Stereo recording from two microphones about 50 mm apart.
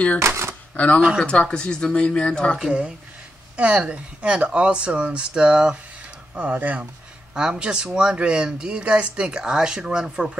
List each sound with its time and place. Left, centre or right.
0.2 s a sound: right
0.7 s speech: left
1.2 s speech: centre
3.5 s speech: right
6.3 s speech: right
7.3 s speech: centre